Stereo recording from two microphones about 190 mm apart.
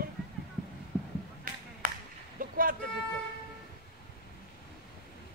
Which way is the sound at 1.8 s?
45° right (ahead or behind).